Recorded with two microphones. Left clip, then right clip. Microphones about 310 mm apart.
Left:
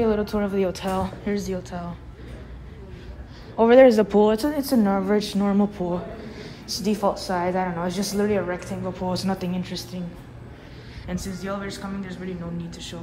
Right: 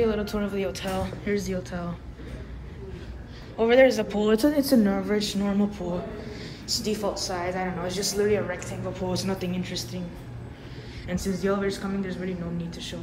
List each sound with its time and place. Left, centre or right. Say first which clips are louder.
0.0 s a woman's voice: left 3 dB; centre
3.5 s a woman's voice: left 5 dB; centre
4.4 s a woman's voice: right 1 dB; centre
4.9 s a woman's voice: left 4 dB; left
11.1 s a woman's voice: right 4 dB; centre